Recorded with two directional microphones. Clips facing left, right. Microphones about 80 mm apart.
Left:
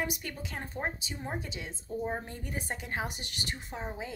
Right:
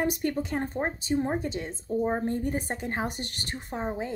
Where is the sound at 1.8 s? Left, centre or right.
Right.